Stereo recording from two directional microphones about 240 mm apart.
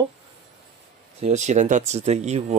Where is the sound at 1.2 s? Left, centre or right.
Right.